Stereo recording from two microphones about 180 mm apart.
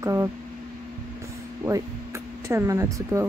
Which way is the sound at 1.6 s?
15° right (ahead or behind).